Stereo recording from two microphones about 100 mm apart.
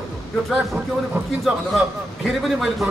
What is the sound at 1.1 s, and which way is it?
Speech, 20° right (ahead or behind).